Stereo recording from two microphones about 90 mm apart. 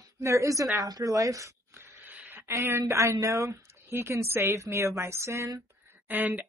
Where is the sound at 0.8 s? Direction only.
45° right (ahead or behind); by 2.2 s 20° right (ahead or behind).